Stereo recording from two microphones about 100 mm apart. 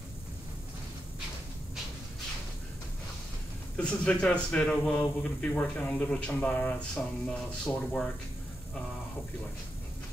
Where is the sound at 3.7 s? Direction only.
10° left (ahead or behind).